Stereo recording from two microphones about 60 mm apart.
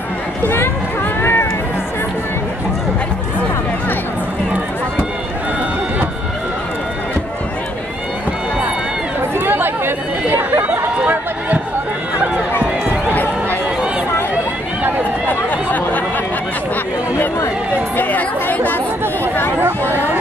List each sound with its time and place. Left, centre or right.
0.4 s speech: left
1.2 s music: left
9.3 s chatter: right
13.1 s run: left
15.2 s run: left
17.9 s chatter: left